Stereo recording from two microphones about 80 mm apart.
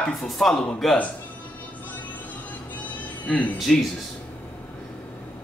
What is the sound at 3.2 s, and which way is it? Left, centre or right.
Speech, centre.